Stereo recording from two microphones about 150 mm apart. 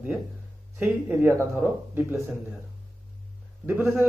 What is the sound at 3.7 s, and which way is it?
Speech, 15° right (ahead or behind).